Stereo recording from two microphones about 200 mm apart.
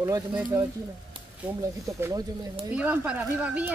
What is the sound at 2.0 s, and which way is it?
Speech, 15° right (ahead or behind).